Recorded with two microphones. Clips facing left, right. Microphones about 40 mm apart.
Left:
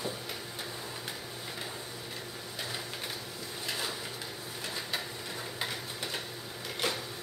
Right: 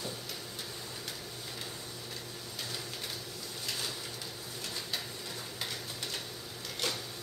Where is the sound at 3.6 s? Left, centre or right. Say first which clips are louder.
Left 3 dB; centre.